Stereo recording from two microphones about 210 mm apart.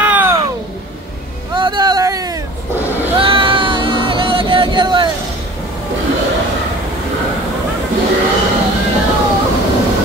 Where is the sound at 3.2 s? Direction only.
25° right (ahead or behind).